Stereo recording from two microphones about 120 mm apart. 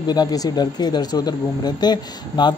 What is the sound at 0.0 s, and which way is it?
Speech, 35° left (ahead or behind).